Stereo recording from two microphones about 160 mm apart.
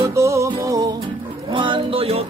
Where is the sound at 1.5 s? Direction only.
30° right (ahead or behind).